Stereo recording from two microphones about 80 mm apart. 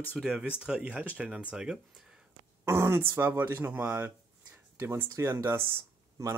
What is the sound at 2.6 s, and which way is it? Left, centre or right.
Speech, right.